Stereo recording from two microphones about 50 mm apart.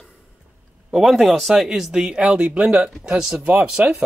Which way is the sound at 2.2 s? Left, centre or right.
Right.